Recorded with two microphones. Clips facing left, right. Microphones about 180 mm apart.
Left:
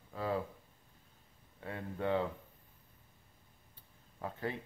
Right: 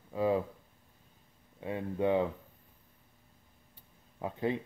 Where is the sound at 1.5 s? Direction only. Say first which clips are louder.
Right 7 dB; 15° right (ahead or behind).